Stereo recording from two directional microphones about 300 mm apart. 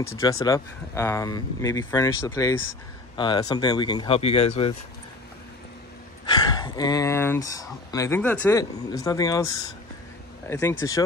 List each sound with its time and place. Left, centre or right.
0.2 s speech: centre
6.2 s speech: centre